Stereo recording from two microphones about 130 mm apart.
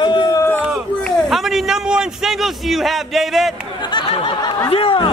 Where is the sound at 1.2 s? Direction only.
Centre (ahead or behind).